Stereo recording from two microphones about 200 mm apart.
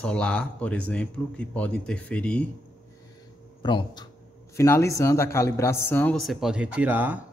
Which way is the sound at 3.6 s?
20° left (ahead or behind).